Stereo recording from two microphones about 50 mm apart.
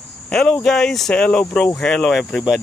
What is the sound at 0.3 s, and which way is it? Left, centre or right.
Speech, centre.